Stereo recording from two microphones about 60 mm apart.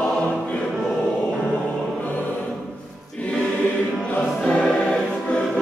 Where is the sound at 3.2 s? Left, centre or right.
Left.